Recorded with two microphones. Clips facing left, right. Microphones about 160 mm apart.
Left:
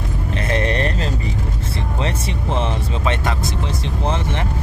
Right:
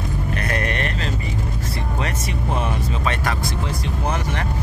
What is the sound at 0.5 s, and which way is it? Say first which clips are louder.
Vehicle: left 7 dB; 30° left (ahead or behind).